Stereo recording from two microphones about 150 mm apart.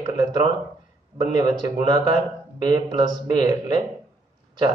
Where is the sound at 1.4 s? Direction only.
30° right (ahead or behind).